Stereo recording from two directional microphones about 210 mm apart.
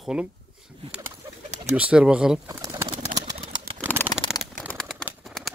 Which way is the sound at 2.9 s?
30° right (ahead or behind).